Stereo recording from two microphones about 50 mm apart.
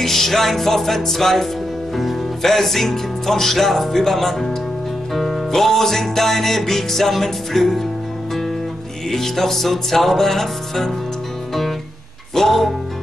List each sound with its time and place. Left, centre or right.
0.0 s music: centre
9.1 s music: centre
12.4 s music: centre